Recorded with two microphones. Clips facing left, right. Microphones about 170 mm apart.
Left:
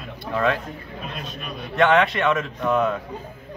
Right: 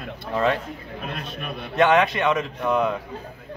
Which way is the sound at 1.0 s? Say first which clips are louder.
Right 1 dB; 60° right (ahead or behind).